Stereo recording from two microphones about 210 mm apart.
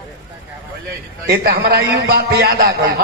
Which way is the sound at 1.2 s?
50° right (ahead or behind).